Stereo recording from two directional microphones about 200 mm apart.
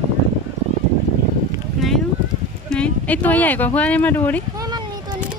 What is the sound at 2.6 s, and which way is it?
Speech, 5° left (ahead or behind).